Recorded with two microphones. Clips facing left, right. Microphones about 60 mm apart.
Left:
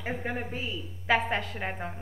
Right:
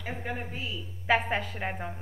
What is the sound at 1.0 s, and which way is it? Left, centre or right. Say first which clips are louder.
Speech: even; centre.